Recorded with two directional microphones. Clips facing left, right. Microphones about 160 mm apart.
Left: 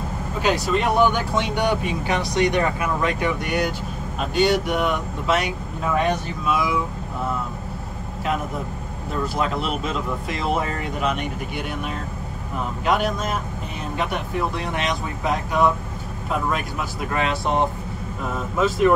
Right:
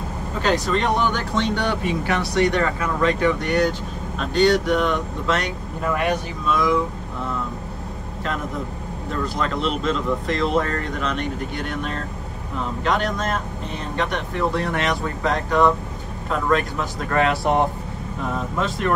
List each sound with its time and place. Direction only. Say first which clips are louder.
0.4 s speech: even; 10° left (ahead or behind)
9.2 s speech: even; 5° left (ahead or behind)
18.6 s speech: left 6 dB; 5° left (ahead or behind)